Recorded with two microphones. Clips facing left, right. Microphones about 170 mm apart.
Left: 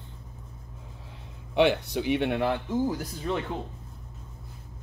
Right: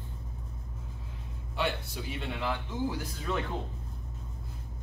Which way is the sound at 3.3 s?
25° left (ahead or behind).